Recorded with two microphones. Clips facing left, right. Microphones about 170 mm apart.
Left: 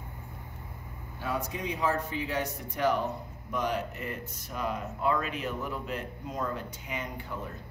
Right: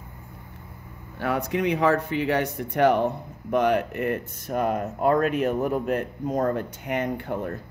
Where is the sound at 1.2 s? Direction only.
70° right (ahead or behind).